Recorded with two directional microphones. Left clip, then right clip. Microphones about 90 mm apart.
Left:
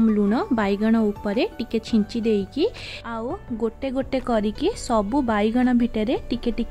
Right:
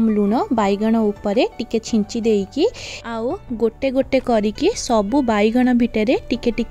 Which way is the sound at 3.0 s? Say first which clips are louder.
Right 6 dB; 65° right (ahead or behind).